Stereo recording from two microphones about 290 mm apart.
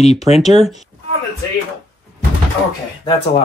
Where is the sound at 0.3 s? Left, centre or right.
Right.